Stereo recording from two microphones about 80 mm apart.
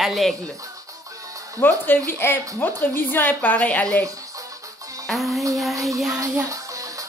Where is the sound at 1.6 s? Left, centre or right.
Left.